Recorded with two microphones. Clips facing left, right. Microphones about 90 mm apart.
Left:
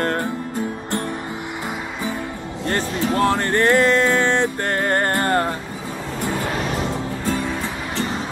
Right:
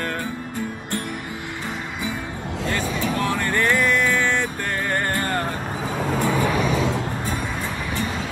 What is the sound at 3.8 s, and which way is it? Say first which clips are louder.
Music: left 4 dB; 25° left (ahead or behind).